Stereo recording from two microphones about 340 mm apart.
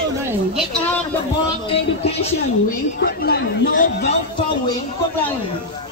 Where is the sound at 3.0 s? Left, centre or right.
Left.